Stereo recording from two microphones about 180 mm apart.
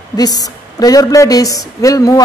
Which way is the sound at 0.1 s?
20° left (ahead or behind).